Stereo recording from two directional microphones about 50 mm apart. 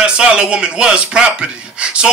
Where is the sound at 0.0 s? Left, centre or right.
Centre.